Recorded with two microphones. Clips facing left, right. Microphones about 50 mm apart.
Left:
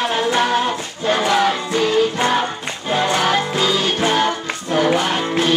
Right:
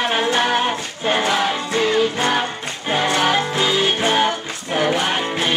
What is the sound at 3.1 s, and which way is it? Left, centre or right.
Music, centre.